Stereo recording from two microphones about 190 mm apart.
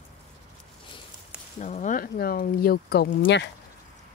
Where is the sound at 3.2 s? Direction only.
65° left (ahead or behind).